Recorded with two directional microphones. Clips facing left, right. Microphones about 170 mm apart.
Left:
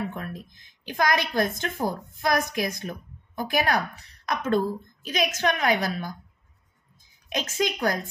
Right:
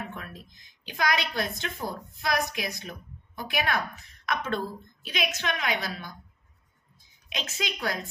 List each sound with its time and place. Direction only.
0.1 s a woman's voice: 40° left (ahead or behind)